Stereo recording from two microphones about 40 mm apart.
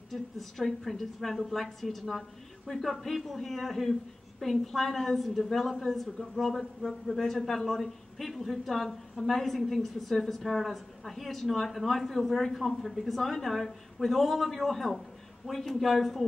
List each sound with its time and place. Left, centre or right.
0.1 s a man's voice: centre